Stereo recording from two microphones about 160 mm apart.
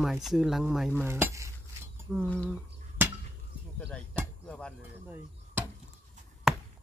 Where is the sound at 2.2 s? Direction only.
10° left (ahead or behind).